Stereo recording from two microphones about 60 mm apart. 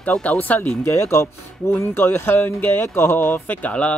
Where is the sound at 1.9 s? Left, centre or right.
Left.